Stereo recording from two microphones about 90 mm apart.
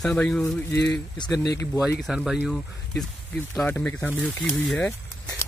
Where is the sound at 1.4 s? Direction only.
40° left (ahead or behind).